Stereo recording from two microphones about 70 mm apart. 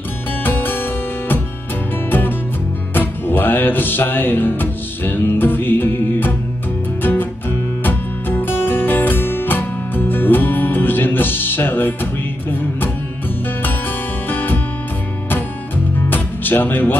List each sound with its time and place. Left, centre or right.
0.4 s music: left
2.0 s music: left
14.3 s music: left
16.1 s music: left